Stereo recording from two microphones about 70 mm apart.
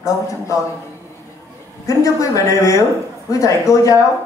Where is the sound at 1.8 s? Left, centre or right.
Left.